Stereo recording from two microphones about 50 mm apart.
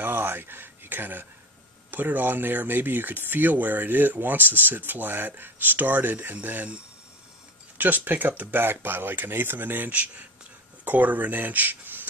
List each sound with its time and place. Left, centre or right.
0.0 s speech: right
7.7 s speech: right